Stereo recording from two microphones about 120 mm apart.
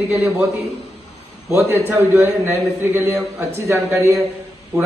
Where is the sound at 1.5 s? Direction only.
20° right (ahead or behind).